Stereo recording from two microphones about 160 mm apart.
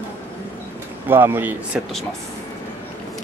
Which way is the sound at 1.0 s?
15° right (ahead or behind).